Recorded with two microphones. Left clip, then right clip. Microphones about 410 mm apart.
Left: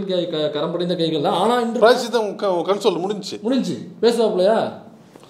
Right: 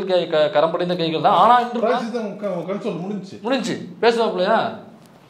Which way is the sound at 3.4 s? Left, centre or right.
Right.